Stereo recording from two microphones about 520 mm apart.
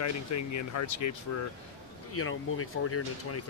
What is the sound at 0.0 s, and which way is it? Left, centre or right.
Speech, left.